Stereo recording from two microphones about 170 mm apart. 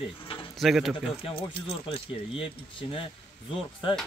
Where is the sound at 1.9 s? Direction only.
30° left (ahead or behind).